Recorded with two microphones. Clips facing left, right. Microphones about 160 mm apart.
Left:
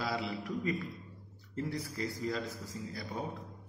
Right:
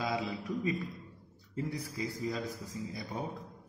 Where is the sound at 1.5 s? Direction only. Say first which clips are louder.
Even; 10° right (ahead or behind).